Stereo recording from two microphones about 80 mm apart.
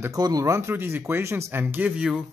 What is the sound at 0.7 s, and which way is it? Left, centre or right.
Speech, right.